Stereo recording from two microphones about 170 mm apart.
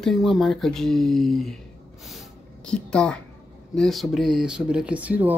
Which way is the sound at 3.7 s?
Centre (ahead or behind).